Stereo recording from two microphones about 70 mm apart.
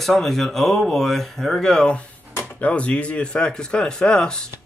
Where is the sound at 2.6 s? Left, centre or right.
Centre.